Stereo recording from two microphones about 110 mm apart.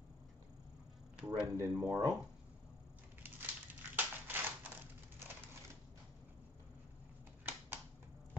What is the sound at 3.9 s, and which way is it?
Crushing, 15° right (ahead or behind).